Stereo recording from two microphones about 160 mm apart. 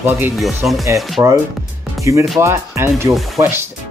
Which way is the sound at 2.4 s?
15° right (ahead or behind).